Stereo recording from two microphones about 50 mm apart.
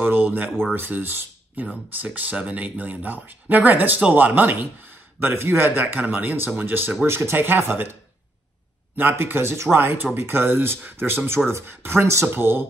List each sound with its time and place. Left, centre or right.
0.0 s a sound: right
0.7 s speech: right
2.0 s speech: right
5.2 s speech: right
7.1 s speech: right
8.9 s speech: right